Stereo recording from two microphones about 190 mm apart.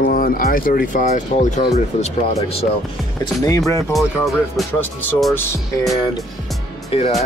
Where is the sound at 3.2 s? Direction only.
15° left (ahead or behind).